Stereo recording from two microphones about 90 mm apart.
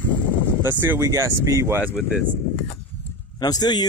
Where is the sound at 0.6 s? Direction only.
25° right (ahead or behind).